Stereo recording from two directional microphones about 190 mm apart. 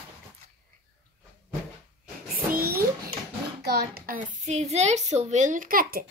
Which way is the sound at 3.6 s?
55° right (ahead or behind).